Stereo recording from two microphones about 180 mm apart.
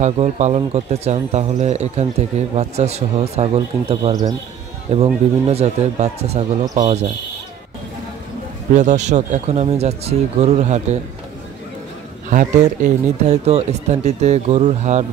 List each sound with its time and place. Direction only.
0.0 s speech: 40° right (ahead or behind); by 4.4 s 20° right (ahead or behind)
4.9 s speech: 35° right (ahead or behind)
8.7 s speech: 40° right (ahead or behind)
12.3 s speech: 45° right (ahead or behind)